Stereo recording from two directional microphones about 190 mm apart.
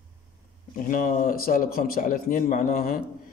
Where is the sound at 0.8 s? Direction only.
45° left (ahead or behind).